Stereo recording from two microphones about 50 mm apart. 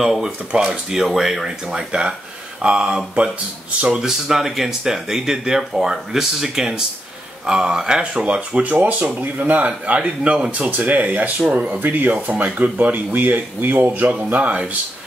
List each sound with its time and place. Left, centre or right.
0.5 s speech: right
1.0 s speech: centre; by 14.8 s right